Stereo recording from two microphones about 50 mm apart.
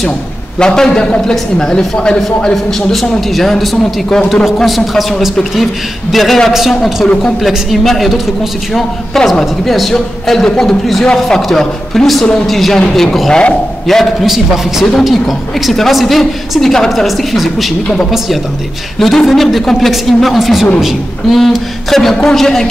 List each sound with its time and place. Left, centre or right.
0.6 s a man's voice: centre
13.3 s a man's voice: centre
13.9 s a woman's voice: centre
14.2 s a man's voice: centre
18.9 s a woman's voice: centre